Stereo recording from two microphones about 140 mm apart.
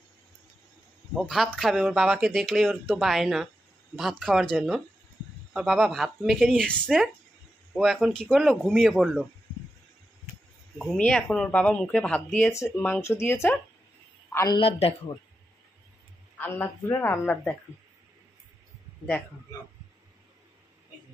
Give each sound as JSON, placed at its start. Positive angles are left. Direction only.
{"t": 1.1, "sound": "speech", "side_deg": 0}
{"t": 10.8, "sound": "a man's voice", "side_deg": 5}
{"t": 14.6, "sound": "a man's voice", "side_deg": 45}
{"t": 16.3, "sound": "speech", "side_deg": 15}